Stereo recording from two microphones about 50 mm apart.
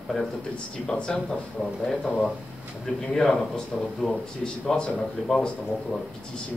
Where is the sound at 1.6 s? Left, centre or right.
Centre.